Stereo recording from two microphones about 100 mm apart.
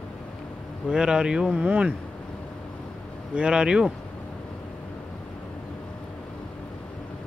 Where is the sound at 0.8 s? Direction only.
10° right (ahead or behind).